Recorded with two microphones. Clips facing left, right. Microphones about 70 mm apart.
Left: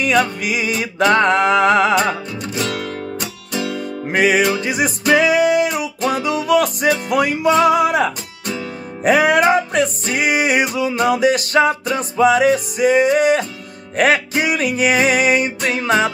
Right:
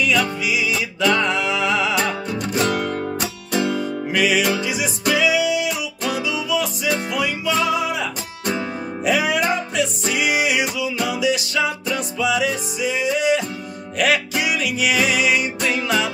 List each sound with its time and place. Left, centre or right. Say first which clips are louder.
0.0 s music: left 3 dB; left
2.7 s music: right 2 dB; centre
4.1 s music: left 4 dB; left